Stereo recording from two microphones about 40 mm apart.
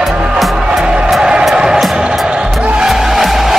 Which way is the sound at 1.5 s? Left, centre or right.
Centre.